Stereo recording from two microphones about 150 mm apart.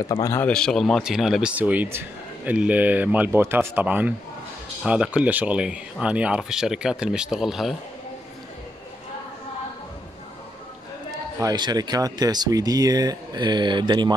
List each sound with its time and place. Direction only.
0.0 s a man's voice: 25° left (ahead or behind)
0.5 s speech: 5° left (ahead or behind)
11.3 s speech: 25° right (ahead or behind)